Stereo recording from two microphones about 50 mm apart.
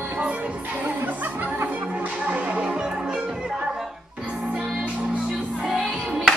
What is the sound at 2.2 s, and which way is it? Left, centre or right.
Music, right.